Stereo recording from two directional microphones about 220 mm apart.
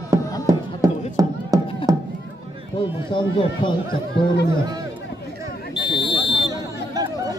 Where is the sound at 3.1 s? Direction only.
20° left (ahead or behind).